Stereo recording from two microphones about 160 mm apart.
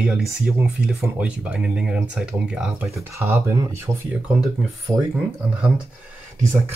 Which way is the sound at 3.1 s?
20° right (ahead or behind).